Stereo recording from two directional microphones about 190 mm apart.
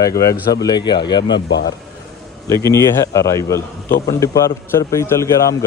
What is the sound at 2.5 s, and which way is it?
A man's voice, 15° left (ahead or behind).